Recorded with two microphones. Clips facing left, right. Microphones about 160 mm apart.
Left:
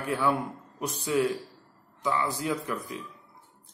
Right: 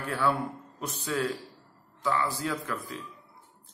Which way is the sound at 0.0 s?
15° left (ahead or behind).